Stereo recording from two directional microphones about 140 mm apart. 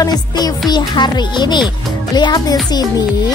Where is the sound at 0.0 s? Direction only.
25° left (ahead or behind).